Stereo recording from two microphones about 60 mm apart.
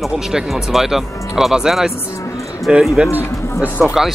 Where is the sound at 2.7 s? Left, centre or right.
Centre.